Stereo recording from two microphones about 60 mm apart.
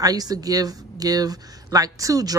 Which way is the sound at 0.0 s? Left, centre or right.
Right.